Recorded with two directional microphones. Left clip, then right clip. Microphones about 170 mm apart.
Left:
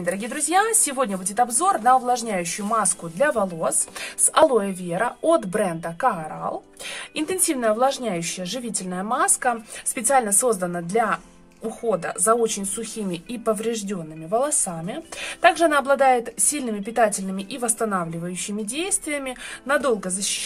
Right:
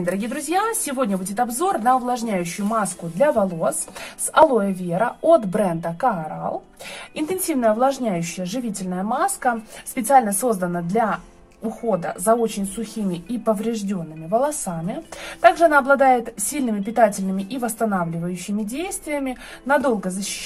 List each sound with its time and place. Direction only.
0.0 s a woman's voice: 10° left (ahead or behind)
7.4 s a woman's voice: 25° left (ahead or behind)